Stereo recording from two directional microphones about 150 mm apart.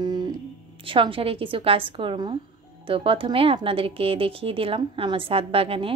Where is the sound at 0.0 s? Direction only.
30° right (ahead or behind).